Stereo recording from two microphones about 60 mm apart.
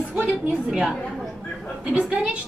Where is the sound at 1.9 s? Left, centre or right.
Centre.